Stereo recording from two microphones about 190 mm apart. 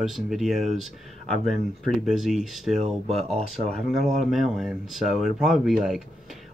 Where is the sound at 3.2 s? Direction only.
35° right (ahead or behind).